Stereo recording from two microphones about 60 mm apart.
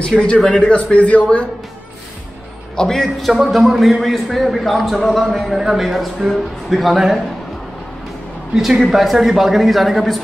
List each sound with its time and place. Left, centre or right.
0.1 s a man's voice: centre
0.5 s a man's voice: centre
2.7 s a man's voice: centre
8.5 s a man's voice: centre